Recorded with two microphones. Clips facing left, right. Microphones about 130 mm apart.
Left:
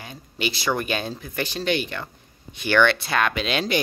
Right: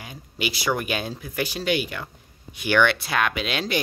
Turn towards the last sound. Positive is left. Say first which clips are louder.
# left 2 dB
turn(degrees=-5)  # may be behind; listen again after turning